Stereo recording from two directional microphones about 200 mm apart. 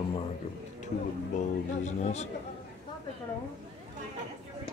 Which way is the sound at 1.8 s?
35° left (ahead or behind).